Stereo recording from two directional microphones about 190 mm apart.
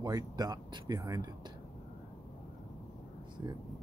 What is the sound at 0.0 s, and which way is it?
Speech, 20° right (ahead or behind).